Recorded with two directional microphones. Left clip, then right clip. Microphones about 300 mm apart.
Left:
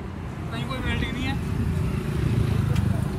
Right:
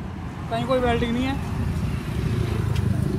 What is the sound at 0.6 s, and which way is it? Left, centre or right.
Speech, centre.